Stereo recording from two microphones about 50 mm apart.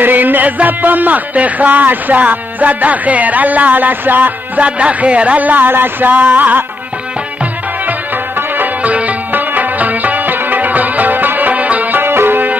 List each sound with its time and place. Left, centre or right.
0.0 s speech: right
8.8 s music: right
12.0 s music: right